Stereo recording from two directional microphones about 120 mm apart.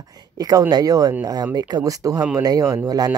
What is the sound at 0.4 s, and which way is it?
Speech, 30° right (ahead or behind).